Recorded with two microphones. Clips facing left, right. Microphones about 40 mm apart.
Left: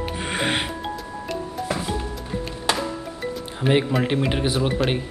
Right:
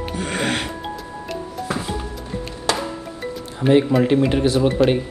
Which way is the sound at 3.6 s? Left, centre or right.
Centre.